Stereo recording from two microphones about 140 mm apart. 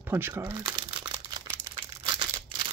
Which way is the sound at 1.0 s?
35° right (ahead or behind).